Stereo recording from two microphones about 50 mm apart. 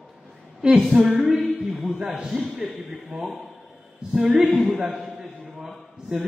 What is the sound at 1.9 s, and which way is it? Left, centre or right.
Speech, centre.